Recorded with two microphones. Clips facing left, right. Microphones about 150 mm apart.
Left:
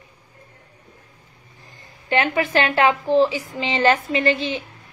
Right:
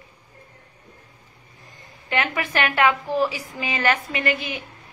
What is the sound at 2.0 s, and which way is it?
A woman's voice, 30° left (ahead or behind).